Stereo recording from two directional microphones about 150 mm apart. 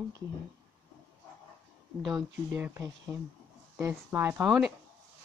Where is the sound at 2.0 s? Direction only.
5° right (ahead or behind).